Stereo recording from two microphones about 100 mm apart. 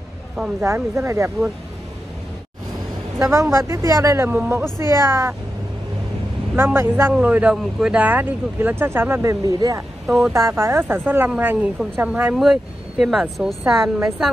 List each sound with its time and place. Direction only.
0.6 s speech: 25° right (ahead or behind)
3.2 s speech: 25° right (ahead or behind)
4.7 s speech: 30° right (ahead or behind)
6.5 s speech: 25° right (ahead or behind)
10.0 s speech: 5° right (ahead or behind)
10.3 s speech: 30° right (ahead or behind)
12.4 s speech: centre (ahead or behind)